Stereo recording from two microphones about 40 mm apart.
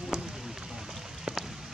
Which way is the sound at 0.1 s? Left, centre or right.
Centre.